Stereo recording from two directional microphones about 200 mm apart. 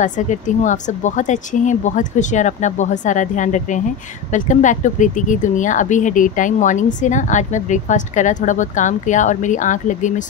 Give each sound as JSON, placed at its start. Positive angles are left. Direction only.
{"t": 0.0, "sound": "speech", "side_deg": 40}